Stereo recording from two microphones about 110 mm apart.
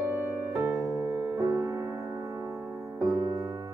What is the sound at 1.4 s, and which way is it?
Music, 35° right (ahead or behind).